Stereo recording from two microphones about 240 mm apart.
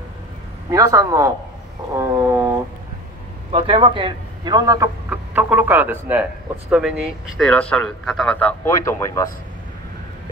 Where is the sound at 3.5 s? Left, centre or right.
Right; by 9.2 s centre.